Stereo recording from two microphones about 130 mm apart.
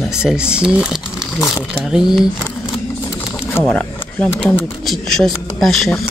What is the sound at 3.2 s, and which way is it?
Speech, 15° left (ahead or behind).